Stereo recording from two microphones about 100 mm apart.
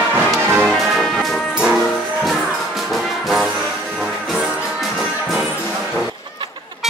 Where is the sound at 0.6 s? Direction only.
Centre (ahead or behind).